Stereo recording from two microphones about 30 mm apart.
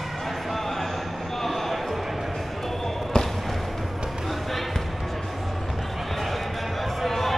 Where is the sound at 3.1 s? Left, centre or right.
Left.